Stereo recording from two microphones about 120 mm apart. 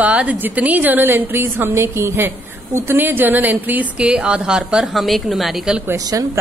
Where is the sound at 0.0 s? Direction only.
10° right (ahead or behind).